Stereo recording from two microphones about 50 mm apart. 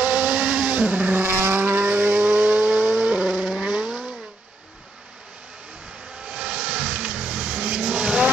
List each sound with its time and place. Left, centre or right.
0.0 s vehicle: right
1.1 s vehicle: right; by 4.0 s centre
6.2 s vehicle: right